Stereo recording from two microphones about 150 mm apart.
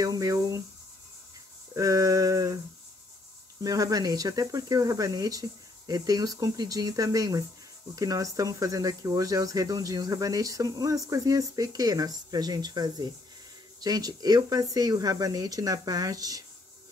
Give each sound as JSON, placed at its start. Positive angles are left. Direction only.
{"t": 0.0, "sound": "speech", "side_deg": -25}
{"t": 1.8, "sound": "speech", "side_deg": -25}
{"t": 3.6, "sound": "speech", "side_deg": -25}